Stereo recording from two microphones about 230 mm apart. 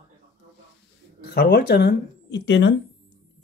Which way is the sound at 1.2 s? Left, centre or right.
Left.